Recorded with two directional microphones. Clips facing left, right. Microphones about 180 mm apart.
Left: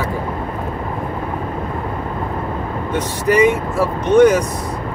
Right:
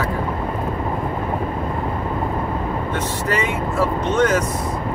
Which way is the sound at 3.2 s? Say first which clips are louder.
Left 11 dB; 15° left (ahead or behind).